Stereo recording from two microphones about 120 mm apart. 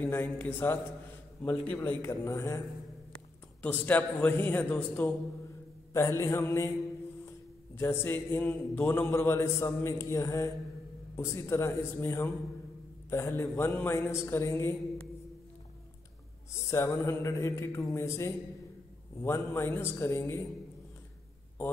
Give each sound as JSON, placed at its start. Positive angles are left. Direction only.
{"t": 0.0, "sound": "a man's voice", "side_deg": 15}
{"t": 3.6, "sound": "a man's voice", "side_deg": 15}
{"t": 7.7, "sound": "a man's voice", "side_deg": 20}
{"t": 16.5, "sound": "a man's voice", "side_deg": 25}